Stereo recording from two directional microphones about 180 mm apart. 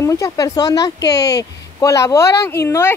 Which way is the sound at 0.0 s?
15° left (ahead or behind).